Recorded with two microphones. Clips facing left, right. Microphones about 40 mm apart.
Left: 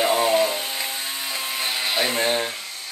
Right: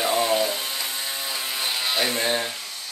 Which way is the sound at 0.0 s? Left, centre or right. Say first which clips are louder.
Left 3 dB; centre.